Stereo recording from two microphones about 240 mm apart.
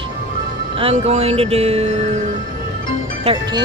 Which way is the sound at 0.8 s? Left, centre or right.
Right.